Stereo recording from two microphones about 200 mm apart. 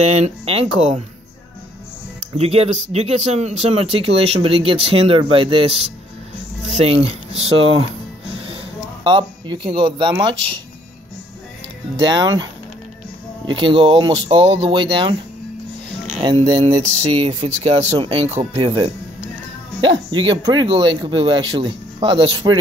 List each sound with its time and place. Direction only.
0.0 s speech: 35° right (ahead or behind)
2.3 s speech: 30° right (ahead or behind)
8.5 s a sound: 25° right (ahead or behind)
12.0 s speech: 20° right (ahead or behind)
13.5 s speech: 25° right (ahead or behind)
16.6 s speech: 35° right (ahead or behind)
17.1 s speech: 25° right (ahead or behind)
17.5 s speech: 35° right (ahead or behind)